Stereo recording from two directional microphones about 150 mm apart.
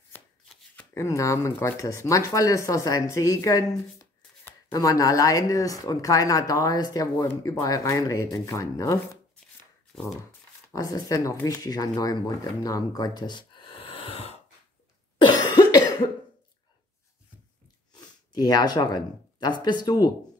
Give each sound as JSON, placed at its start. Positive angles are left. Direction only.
{"t": 0.9, "sound": "speech", "side_deg": 20}
{"t": 4.7, "sound": "speech", "side_deg": 25}
{"t": 10.7, "sound": "speech", "side_deg": 25}
{"t": 15.1, "sound": "cough", "side_deg": 30}
{"t": 17.9, "sound": "speech", "side_deg": 25}